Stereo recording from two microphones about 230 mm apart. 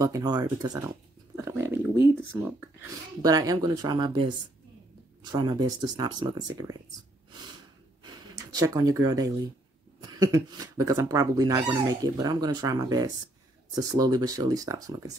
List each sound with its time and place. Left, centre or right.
0.0 s speech: centre
8.0 s gasp: centre
9.9 s speech: centre